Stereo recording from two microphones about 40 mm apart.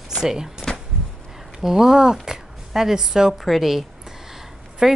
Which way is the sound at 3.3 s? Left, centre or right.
Centre.